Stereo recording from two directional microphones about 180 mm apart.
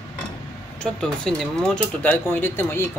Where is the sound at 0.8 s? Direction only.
5° left (ahead or behind).